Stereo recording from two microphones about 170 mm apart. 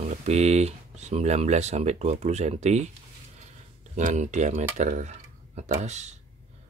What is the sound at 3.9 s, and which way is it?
Speech, 45° right (ahead or behind).